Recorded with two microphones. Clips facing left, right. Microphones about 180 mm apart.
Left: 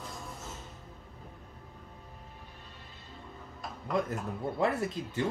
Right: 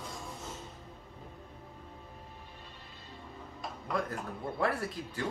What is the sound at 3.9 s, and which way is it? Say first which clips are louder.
Speech: left 4 dB; 20° left (ahead or behind).